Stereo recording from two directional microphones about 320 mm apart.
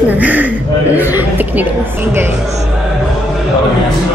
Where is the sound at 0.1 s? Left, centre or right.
Centre.